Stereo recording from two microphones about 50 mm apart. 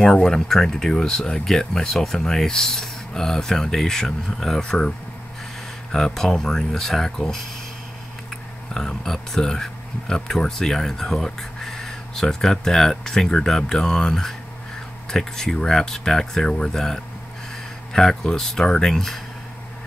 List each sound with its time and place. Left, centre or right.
0.0 s speech: centre
8.7 s speech: centre